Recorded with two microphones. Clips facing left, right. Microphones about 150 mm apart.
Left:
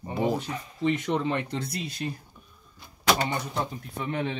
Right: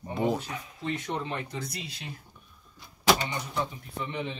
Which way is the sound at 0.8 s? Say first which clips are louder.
Left 7 dB; 90° left.